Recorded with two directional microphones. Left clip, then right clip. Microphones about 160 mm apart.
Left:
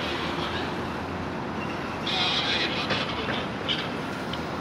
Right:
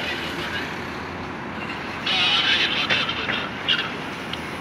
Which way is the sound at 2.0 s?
35° left (ahead or behind).